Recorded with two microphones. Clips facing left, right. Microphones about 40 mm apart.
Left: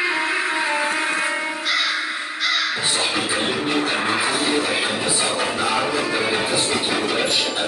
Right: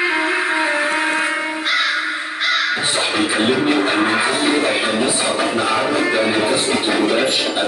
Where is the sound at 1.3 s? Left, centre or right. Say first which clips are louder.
Right 3 dB; right.